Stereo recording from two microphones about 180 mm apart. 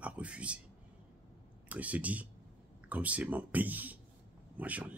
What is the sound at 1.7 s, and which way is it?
Speech, 10° right (ahead or behind).